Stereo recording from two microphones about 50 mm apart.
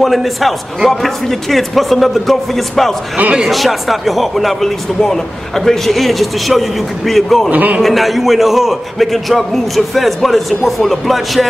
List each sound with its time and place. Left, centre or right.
0.0 s speech: centre
7.5 s a man's voice: right
7.8 s speech: centre